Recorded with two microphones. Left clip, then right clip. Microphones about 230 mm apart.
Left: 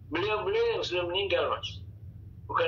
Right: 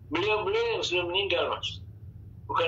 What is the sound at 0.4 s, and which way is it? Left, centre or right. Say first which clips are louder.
A man's voice: even; right.